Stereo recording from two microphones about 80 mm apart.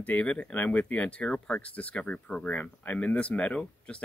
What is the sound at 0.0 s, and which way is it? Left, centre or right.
Speech, centre.